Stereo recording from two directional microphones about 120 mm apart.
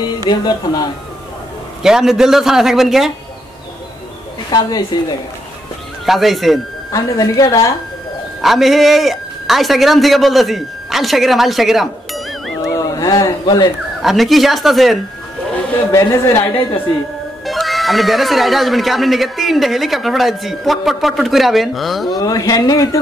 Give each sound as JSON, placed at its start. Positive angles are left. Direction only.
{"t": 0.3, "sound": "speech", "side_deg": 35}
{"t": 1.8, "sound": "speech", "side_deg": -5}
{"t": 4.5, "sound": "speech", "side_deg": 35}
{"t": 6.0, "sound": "speech", "side_deg": 0}
{"t": 6.9, "sound": "speech", "side_deg": 30}
{"t": 8.4, "sound": "a man's voice", "side_deg": 0}
{"t": 12.7, "sound": "a sound", "side_deg": 30}
{"t": 14.0, "sound": "speech", "side_deg": 0}
{"t": 15.9, "sound": "a woman's voice", "side_deg": 25}
{"t": 17.5, "sound": "speech", "side_deg": 0}
{"t": 22.2, "sound": "speech", "side_deg": 30}